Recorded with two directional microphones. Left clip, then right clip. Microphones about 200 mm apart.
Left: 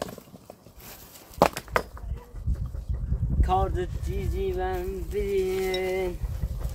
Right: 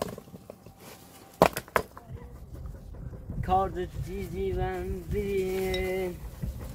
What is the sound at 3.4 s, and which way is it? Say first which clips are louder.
Boat: left 1 dB; 30° left (ahead or behind).